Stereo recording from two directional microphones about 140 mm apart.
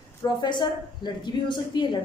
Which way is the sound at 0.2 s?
30° left (ahead or behind).